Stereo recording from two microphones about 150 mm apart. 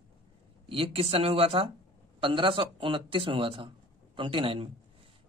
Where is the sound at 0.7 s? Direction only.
40° right (ahead or behind).